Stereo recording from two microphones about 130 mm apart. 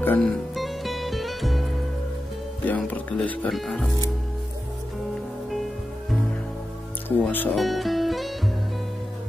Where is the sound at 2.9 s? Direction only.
10° left (ahead or behind).